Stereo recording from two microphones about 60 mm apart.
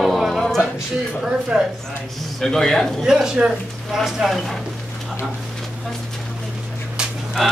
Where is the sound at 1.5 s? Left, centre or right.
Centre.